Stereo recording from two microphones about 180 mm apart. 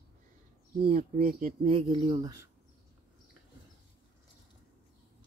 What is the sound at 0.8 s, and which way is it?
Speech, 55° right (ahead or behind).